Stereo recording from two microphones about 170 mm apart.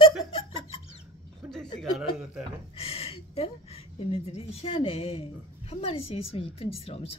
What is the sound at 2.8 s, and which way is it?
Speech, 35° left (ahead or behind).